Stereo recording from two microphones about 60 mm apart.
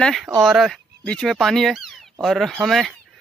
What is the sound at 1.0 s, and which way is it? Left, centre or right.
Speech, centre.